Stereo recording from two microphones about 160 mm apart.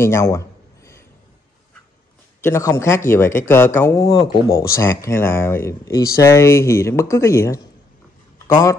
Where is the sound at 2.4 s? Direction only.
20° left (ahead or behind).